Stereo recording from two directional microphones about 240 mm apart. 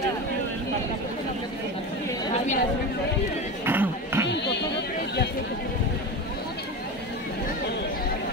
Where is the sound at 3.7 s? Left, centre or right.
Centre.